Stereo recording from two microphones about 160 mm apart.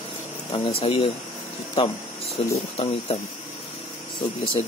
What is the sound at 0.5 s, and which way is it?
Speech, 35° left (ahead or behind).